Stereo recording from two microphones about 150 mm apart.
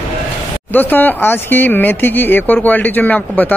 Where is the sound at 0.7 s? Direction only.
10° left (ahead or behind).